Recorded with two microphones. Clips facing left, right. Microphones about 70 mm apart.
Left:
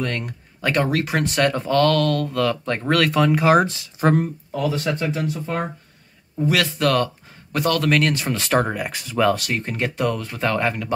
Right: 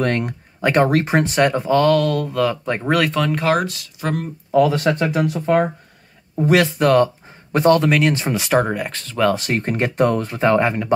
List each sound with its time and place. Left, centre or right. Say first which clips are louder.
0.0 s speech: right 6 dB; right
0.6 s speech: right 5 dB; right; by 3.1 s centre
3.1 s speech: left 2 dB; centre
3.6 s speech: left 5 dB; left
4.6 s speech: right 7 dB; right
6.5 s speech: right 6 dB; centre
8.3 s speech: right 3 dB; centre
8.5 s speech: right 2 dB; centre
9.4 s speech: right 4 dB; right
10.4 s speech: right 5 dB; centre